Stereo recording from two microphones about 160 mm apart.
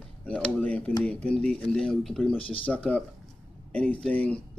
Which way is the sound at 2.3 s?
35° left (ahead or behind).